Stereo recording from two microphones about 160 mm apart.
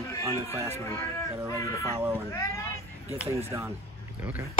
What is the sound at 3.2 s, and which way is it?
Speech, 20° right (ahead or behind).